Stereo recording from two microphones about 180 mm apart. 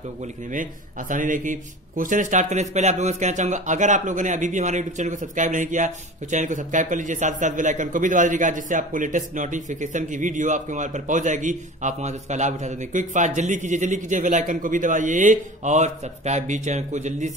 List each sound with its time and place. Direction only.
0.2 s a man's voice: 45° right (ahead or behind)